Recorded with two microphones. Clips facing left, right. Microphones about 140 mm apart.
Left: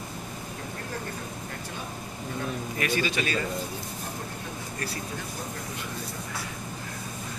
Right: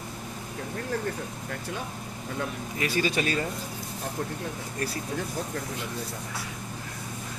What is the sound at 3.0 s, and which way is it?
Speech, 40° right (ahead or behind).